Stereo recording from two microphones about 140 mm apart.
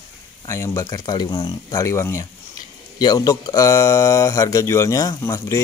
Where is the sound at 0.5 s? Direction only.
20° left (ahead or behind).